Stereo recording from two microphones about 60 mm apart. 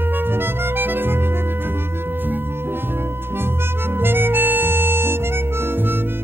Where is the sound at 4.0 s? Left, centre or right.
Right.